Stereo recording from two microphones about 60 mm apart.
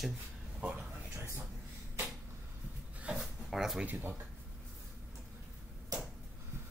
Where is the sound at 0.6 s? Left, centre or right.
Right.